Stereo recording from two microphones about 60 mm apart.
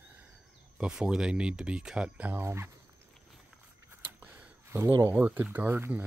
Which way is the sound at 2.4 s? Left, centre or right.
Right.